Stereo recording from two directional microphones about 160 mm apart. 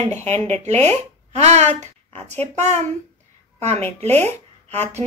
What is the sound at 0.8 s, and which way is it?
A woman's voice, 45° right (ahead or behind).